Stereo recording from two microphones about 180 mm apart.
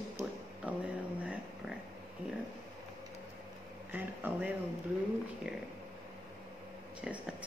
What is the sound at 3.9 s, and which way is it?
Speech, 10° right (ahead or behind).